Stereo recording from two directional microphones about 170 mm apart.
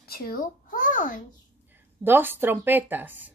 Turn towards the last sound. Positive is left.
turn(degrees=-10)  # may be behind; listen again after turning